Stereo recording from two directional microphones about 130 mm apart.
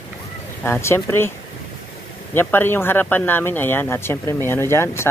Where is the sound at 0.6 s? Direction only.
20° left (ahead or behind).